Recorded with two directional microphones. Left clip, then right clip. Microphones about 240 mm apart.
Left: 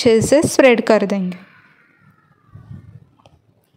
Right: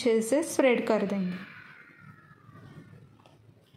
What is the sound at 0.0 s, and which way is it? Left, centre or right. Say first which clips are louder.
A woman's voice: left 13 dB; left.